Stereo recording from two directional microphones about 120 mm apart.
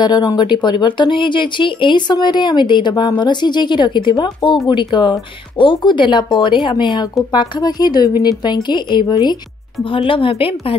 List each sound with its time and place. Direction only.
0.0 s speech: 35° left (ahead or behind)
9.8 s a woman's voice: 50° left (ahead or behind)